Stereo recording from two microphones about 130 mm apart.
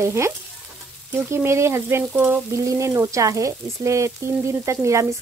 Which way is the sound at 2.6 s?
25° right (ahead or behind).